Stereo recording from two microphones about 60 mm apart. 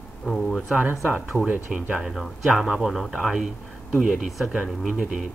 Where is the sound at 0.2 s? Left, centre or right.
Centre.